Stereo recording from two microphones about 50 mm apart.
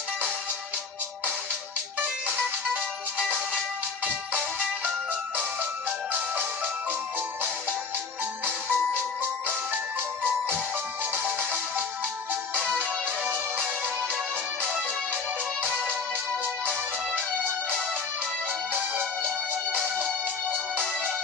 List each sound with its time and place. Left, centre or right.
3.5 s music: right
8.5 s music: right
11.1 s music: right
18.7 s music: right